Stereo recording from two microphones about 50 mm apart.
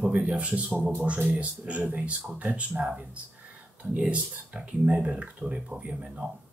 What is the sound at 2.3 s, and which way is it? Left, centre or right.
A man's voice, right.